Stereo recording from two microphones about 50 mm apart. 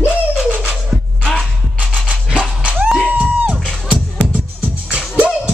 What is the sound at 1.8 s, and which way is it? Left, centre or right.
Dog, right.